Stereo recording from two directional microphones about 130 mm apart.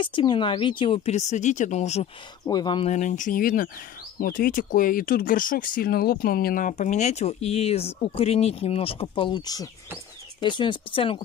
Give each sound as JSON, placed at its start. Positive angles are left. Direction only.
{"t": 0.0, "sound": "speech", "side_deg": 40}
{"t": 2.4, "sound": "speech", "side_deg": 30}
{"t": 2.8, "sound": "speech", "side_deg": 65}
{"t": 6.5, "sound": "speech", "side_deg": 80}